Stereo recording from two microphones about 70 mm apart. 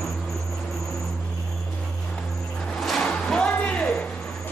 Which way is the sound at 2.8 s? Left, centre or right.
Centre.